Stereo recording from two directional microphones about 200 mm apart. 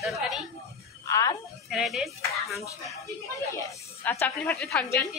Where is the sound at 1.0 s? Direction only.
15° left (ahead or behind).